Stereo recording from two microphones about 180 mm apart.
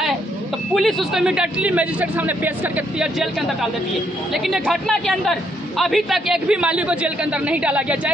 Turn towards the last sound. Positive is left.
turn(degrees=-5)  # may be behind; listen again after turning